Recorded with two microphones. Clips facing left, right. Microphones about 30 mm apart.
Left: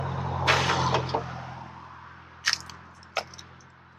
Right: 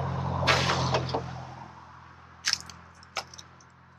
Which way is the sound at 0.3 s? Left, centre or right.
Centre.